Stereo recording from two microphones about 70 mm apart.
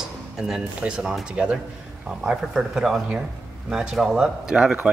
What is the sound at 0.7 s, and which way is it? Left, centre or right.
A man's voice, centre.